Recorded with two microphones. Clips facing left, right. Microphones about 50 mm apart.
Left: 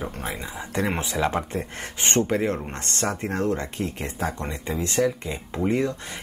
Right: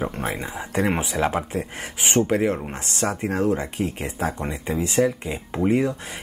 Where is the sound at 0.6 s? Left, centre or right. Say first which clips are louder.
Right 3 dB; centre.